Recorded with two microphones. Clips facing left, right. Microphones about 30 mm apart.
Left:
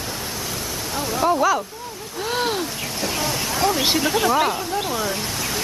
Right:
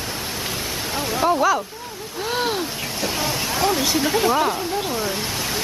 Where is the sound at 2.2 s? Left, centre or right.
Centre.